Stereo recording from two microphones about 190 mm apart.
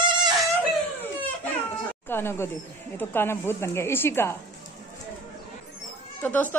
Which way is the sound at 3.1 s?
10° left (ahead or behind).